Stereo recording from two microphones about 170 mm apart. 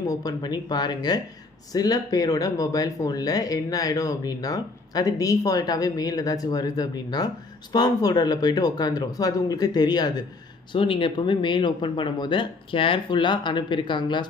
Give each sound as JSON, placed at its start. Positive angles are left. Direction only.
{"t": 0.0, "sound": "speech", "side_deg": 20}